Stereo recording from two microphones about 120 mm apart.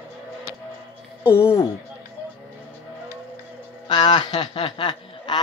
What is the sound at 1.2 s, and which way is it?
Speech, 20° left (ahead or behind).